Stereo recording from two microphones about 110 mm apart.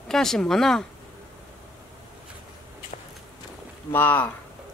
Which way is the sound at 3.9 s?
15° left (ahead or behind).